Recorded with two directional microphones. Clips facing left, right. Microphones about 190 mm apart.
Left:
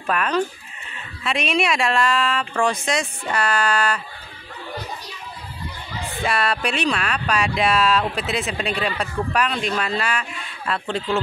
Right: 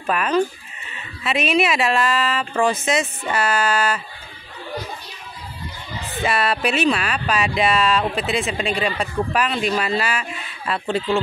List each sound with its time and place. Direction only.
0.0 s speech: 5° right (ahead or behind)
6.2 s speech: centre (ahead or behind)